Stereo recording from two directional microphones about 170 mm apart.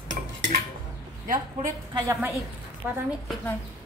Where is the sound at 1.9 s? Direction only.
20° right (ahead or behind).